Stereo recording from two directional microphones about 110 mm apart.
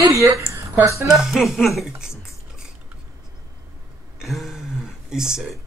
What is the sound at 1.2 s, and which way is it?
Speech, centre (ahead or behind).